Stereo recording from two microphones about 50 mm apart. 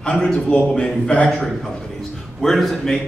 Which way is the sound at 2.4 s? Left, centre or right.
Centre.